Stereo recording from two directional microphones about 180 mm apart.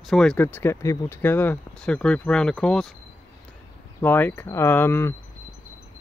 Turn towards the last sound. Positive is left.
turn(degrees=15)  # may be behind; listen again after turning